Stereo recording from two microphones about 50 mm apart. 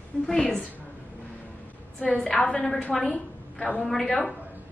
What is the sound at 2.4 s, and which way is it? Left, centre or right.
Speech, left.